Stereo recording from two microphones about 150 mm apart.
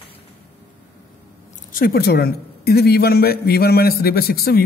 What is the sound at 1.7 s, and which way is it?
A man's voice, 85° left.